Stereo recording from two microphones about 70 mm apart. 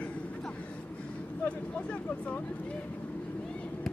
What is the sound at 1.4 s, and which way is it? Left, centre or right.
Vehicle, centre.